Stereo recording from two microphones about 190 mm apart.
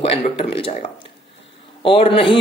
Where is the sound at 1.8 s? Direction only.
30° left (ahead or behind).